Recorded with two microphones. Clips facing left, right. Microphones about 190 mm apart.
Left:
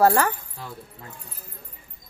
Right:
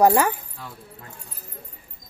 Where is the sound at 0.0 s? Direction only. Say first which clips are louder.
Right 2 dB; 15° right (ahead or behind).